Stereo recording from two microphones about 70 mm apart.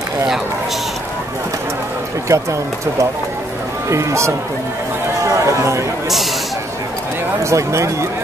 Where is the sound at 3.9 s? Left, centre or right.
Right.